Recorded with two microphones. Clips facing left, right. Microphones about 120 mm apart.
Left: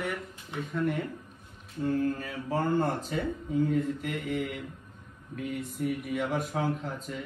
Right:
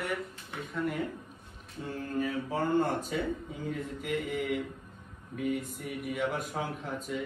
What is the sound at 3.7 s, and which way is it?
Speech, centre (ahead or behind).